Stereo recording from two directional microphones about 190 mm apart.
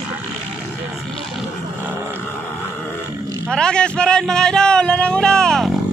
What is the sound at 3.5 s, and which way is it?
Music, 5° left (ahead or behind).